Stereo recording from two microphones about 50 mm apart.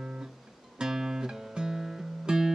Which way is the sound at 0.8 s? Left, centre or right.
Centre.